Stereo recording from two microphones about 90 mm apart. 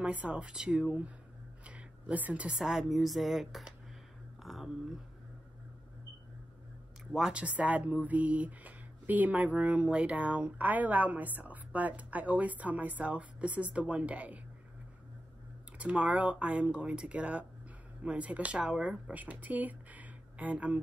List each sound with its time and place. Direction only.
0.0 s speech: 15° right (ahead or behind)
4.4 s whispering: centre (ahead or behind)
7.2 s speech: 10° right (ahead or behind)
15.8 s speech: 15° right (ahead or behind)